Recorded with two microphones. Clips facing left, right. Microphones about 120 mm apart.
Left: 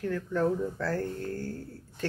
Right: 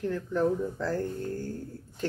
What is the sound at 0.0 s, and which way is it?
Speech, 20° right (ahead or behind).